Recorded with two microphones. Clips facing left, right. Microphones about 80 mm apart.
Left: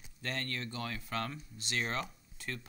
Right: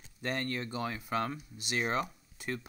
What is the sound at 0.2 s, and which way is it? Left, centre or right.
Speech, centre.